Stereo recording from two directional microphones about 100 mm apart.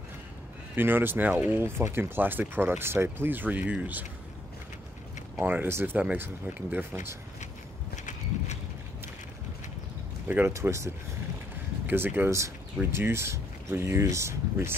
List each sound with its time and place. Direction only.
0.7 s speech: 20° right (ahead or behind)
5.3 s speech: 20° right (ahead or behind)
10.2 s speech: 15° right (ahead or behind)
10.5 s speech: 30° right (ahead or behind)